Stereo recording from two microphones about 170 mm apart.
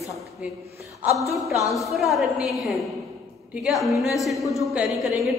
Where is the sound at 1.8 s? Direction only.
Centre (ahead or behind).